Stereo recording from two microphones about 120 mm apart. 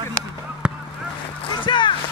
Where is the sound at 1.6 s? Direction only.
40° left (ahead or behind).